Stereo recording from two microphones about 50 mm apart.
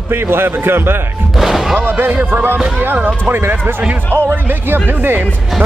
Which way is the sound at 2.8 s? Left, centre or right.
Right.